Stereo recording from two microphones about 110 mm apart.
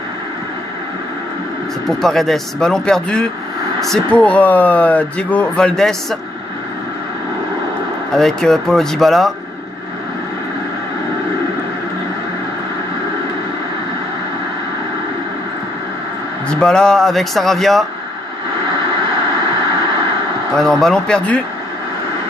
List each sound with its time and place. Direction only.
1.9 s speech: centre (ahead or behind)
8.1 s speech: 5° left (ahead or behind)
16.4 s speech: 5° left (ahead or behind)
20.5 s speech: 5° left (ahead or behind)